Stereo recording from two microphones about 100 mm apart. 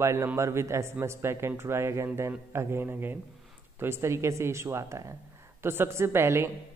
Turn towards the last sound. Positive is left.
turn(degrees=-25)  # may be behind; listen again after turning